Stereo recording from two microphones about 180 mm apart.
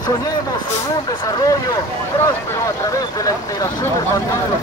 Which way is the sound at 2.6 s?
20° left (ahead or behind).